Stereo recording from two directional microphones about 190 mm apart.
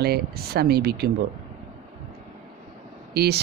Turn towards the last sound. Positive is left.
turn(degrees=-60)  # may be behind; listen again after turning